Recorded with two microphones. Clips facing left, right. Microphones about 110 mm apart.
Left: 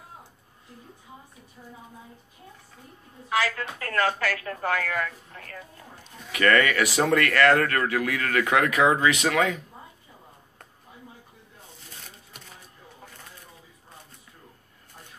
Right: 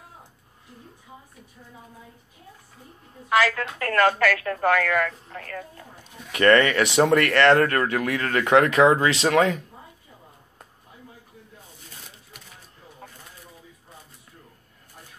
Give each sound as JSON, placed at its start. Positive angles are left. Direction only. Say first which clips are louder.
{"t": 3.3, "sound": "speech", "louder": "right 5 dB", "side_deg": -70}
{"t": 6.3, "sound": "speech", "louder": "right 4 dB", "side_deg": -30}